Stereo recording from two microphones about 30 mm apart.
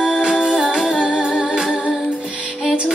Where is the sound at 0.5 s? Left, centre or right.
Centre.